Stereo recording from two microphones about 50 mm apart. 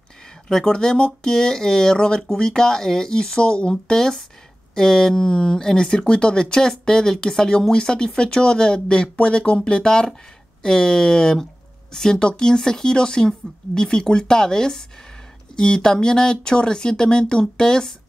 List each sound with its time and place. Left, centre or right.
0.5 s speech: centre